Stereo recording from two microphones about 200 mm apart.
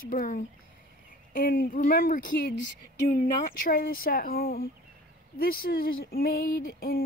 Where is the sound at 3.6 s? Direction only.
45° left (ahead or behind).